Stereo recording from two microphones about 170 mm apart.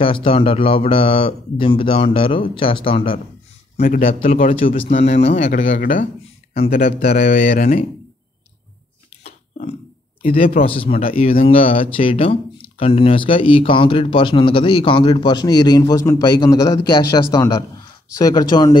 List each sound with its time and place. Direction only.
0.0 s speech: 30° left (ahead or behind)
3.7 s speech: 50° left (ahead or behind)
4.6 s speech: 35° left (ahead or behind)
4.8 s speech: 45° left (ahead or behind)
10.2 s speech: 55° left (ahead or behind)
10.6 s speech: 30° left (ahead or behind)